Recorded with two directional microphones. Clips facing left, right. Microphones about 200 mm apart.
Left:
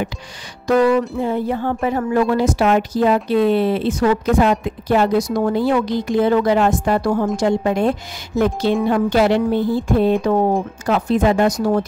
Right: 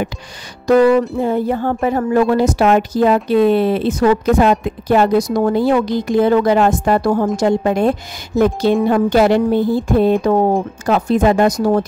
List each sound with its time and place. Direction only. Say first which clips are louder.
0.7 s a woman's voice: right 4 dB; 40° right (ahead or behind)